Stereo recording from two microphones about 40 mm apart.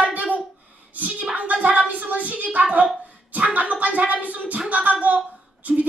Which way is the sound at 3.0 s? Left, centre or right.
Right.